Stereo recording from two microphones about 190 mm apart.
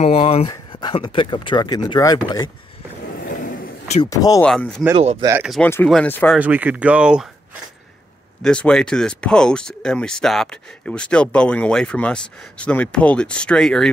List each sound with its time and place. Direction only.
0.0 s speech: 30° left (ahead or behind)
4.0 s speech: 20° left (ahead or behind)
4.5 s speech: 5° left (ahead or behind)
4.9 s speech: 30° right (ahead or behind)
5.6 s speech: 10° left (ahead or behind)
6.3 s speech: 10° right (ahead or behind)
8.4 s speech: 5° left (ahead or behind)